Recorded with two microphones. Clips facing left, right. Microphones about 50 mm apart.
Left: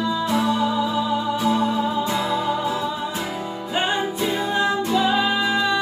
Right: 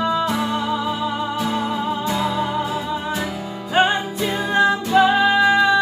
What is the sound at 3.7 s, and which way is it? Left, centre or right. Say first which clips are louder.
Music: right 5 dB; right.